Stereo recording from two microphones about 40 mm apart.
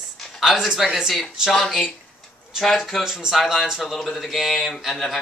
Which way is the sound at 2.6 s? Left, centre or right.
Centre.